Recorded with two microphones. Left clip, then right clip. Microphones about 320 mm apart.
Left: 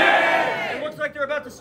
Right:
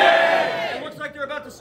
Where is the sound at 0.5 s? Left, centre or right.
Centre.